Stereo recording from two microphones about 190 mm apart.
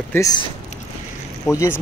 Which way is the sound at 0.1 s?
15° left (ahead or behind).